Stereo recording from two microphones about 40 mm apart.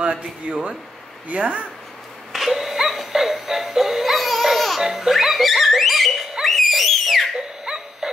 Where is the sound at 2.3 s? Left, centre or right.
Centre.